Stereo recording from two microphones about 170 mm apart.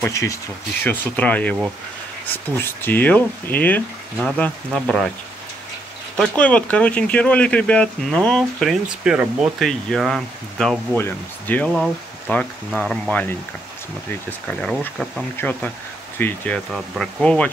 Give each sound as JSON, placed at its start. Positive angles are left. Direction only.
{"t": 0.0, "sound": "speech", "side_deg": 20}
{"t": 6.1, "sound": "speech", "side_deg": 5}
{"t": 14.5, "sound": "speech", "side_deg": 5}